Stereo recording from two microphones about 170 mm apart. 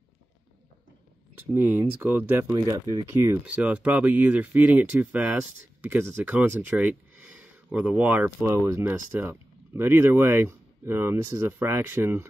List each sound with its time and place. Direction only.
1.5 s speech: 10° right (ahead or behind)
2.5 s speech: 25° right (ahead or behind)
3.1 s speech: 15° right (ahead or behind)